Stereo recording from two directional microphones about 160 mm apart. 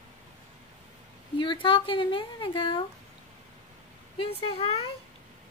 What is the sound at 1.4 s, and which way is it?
A woman's voice, 30° left (ahead or behind).